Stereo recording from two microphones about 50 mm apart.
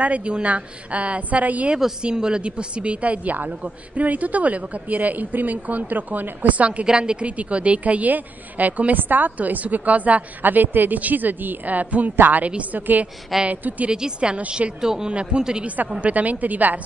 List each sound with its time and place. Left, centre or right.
0.0 s a woman's voice: right
2.0 s a woman's voice: centre
6.9 s a woman's voice: centre
14.8 s speech: centre
16.0 s a woman's voice: right